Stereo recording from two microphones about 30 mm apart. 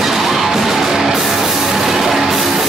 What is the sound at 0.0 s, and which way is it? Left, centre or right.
Music, centre.